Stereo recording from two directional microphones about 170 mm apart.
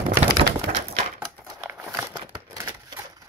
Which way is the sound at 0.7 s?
40° right (ahead or behind).